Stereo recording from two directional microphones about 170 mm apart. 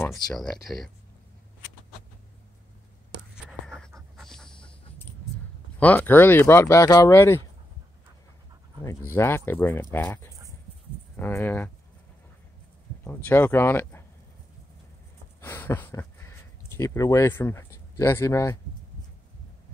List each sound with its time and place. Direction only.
0.0 s speech: 5° left (ahead or behind)
3.3 s writing: centre (ahead or behind)
4.2 s dog: 5° left (ahead or behind)
5.8 s speech: 10° left (ahead or behind)
8.8 s speech: 15° left (ahead or behind)
13.0 s speech: 10° left (ahead or behind)
15.4 s a sound: 10° left (ahead or behind)